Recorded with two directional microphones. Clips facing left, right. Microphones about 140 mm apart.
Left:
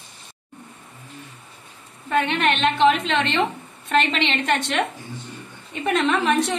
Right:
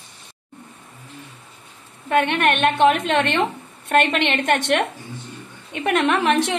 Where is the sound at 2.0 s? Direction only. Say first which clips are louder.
Right 2 dB; 60° right (ahead or behind).